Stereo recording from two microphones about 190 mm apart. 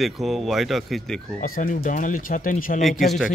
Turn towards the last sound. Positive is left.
turn(degrees=0)  # may be behind; listen again after turning